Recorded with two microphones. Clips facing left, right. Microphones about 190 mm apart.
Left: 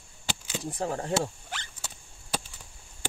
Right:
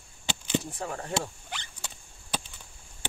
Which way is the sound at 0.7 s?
35° left (ahead or behind).